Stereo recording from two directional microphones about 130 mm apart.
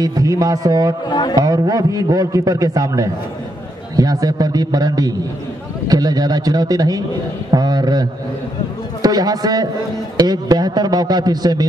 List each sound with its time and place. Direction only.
0.0 s a man's voice: 30° right (ahead or behind)
1.0 s a man's voice: 35° left (ahead or behind)
1.3 s a man's voice: 30° right (ahead or behind)